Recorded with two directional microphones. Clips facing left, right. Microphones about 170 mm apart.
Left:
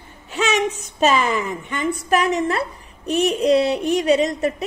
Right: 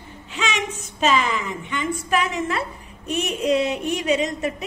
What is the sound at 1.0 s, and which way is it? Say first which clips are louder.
A woman's voice: left 3 dB; 45° left (ahead or behind).